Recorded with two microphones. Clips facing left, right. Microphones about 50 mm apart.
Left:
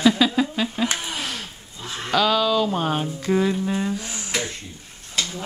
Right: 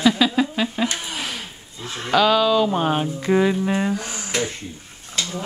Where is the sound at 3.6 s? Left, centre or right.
Right.